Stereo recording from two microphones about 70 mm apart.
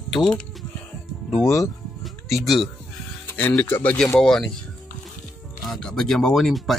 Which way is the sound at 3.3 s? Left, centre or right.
Left.